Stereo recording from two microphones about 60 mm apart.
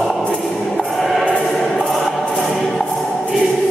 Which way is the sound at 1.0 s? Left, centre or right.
Centre.